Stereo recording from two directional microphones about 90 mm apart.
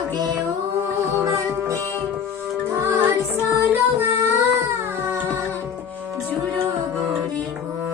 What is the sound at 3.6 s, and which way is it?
Music, 20° right (ahead or behind).